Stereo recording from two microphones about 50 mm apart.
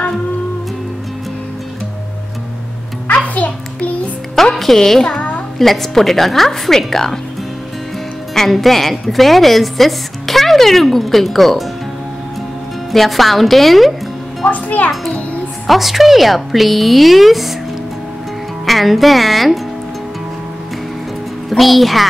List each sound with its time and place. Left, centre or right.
3.1 s a sound: left
4.6 s a woman's voice: centre
8.4 s a woman's voice: centre
12.9 s a woman's voice: centre
14.4 s a child's voice: left
15.6 s a woman's voice: centre
18.7 s a woman's voice: centre
21.5 s a woman's voice: centre